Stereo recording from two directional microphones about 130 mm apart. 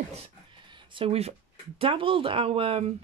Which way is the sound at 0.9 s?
50° right (ahead or behind).